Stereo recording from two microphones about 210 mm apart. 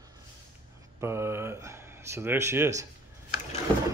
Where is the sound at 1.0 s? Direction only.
10° right (ahead or behind).